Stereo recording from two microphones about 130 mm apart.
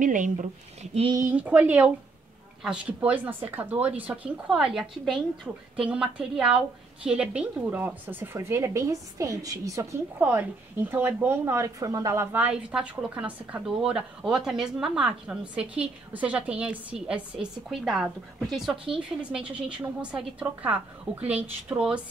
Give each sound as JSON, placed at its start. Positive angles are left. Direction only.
{"t": 0.0, "sound": "speech", "side_deg": -80}
{"t": 1.3, "sound": "a woman's voice", "side_deg": -10}
{"t": 10.9, "sound": "a woman's voice", "side_deg": -15}